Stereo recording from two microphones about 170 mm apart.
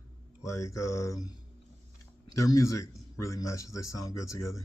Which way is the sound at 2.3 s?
20° left (ahead or behind).